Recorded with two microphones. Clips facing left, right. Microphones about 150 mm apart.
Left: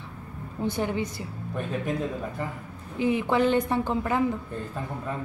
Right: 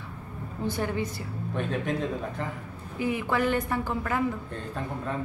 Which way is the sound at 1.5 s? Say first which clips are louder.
Even; 5° left (ahead or behind).